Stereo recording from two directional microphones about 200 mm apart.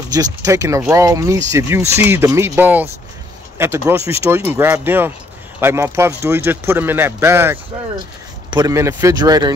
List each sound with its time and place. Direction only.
0.1 s speech: 15° right (ahead or behind)